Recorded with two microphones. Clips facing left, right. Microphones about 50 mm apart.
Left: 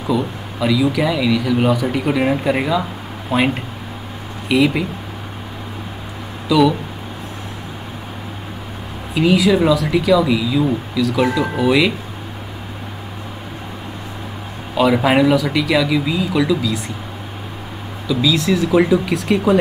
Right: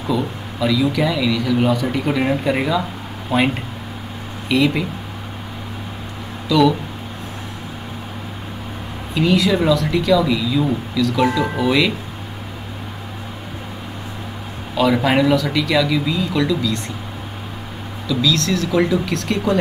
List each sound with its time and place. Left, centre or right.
0.0 s speech: centre
6.5 s speech: centre
9.1 s speech: centre
14.8 s speech: centre
18.0 s speech: centre